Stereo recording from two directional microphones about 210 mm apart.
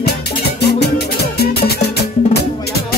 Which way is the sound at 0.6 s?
50° left (ahead or behind).